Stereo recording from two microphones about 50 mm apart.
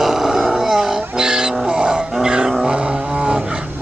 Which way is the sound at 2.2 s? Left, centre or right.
Centre.